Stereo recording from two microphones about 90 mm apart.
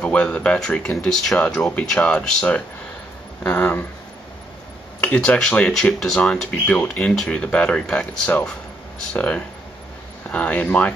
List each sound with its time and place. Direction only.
0.0 s speech: 15° left (ahead or behind)
5.0 s speech: 15° left (ahead or behind)